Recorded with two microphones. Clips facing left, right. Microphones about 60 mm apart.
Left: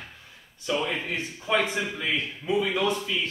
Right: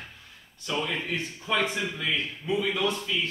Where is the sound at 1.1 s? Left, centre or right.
Left.